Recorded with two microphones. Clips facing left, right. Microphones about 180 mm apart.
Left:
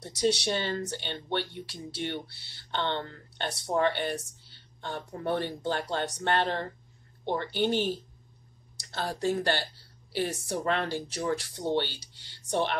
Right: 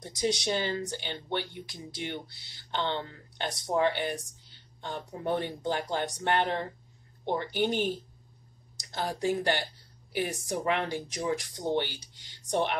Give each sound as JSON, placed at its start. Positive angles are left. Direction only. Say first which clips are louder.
{"t": 0.0, "sound": "speech", "louder": "left 3 dB", "side_deg": 70}
{"t": 2.7, "sound": "speech", "louder": "even", "side_deg": -15}
{"t": 8.9, "sound": "speech", "louder": "even", "side_deg": -15}